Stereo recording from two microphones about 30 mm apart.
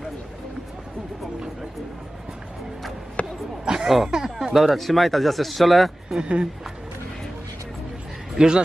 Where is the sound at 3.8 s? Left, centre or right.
Centre.